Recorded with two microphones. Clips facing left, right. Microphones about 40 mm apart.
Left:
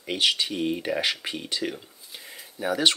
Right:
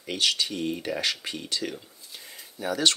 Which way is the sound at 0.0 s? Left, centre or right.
Centre.